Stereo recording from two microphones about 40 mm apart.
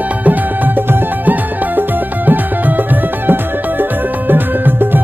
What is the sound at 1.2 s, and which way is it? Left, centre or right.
Music, right.